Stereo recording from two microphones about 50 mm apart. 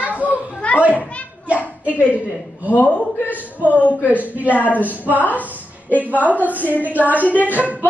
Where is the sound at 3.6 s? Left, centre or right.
Left.